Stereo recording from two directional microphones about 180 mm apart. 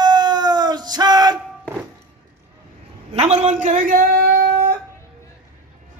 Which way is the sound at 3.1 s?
35° right (ahead or behind).